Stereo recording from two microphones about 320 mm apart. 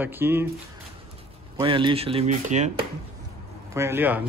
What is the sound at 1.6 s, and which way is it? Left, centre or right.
Speech, centre.